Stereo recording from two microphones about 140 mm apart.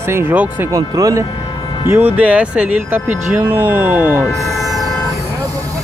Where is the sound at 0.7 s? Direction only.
25° right (ahead or behind).